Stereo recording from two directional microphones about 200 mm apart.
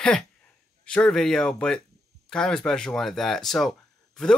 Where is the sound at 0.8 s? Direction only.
5° left (ahead or behind).